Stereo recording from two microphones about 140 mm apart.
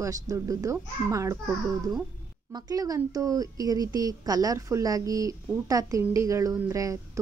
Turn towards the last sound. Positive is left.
turn(degrees=-25)  # may be behind; listen again after turning